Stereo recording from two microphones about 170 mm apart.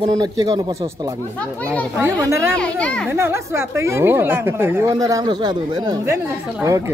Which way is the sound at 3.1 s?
15° right (ahead or behind).